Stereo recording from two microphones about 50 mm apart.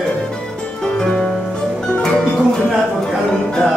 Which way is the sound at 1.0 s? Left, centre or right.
Centre.